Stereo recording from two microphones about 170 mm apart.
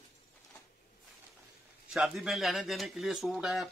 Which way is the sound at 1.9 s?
5° right (ahead or behind).